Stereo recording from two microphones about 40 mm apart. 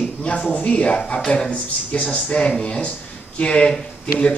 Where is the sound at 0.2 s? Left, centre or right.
Left.